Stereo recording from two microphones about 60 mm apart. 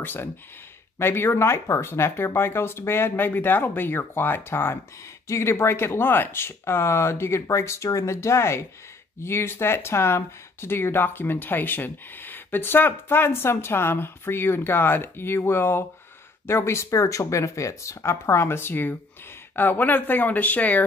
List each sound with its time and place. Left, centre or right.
0.0 s speech: left